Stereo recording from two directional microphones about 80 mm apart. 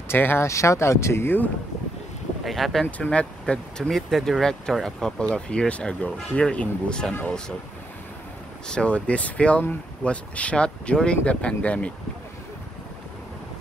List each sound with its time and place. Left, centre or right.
0.1 s speech: left
0.5 s speech: left
2.4 s speech: centre
3.0 s speech: centre
3.9 s speech: centre
8.6 s speech: centre